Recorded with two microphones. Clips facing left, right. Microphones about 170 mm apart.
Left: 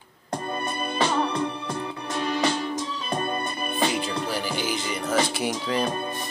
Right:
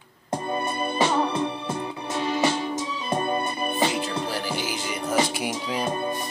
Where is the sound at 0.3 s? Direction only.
10° right (ahead or behind).